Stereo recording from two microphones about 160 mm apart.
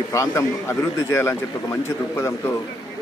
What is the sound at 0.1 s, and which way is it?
Speech, 20° left (ahead or behind).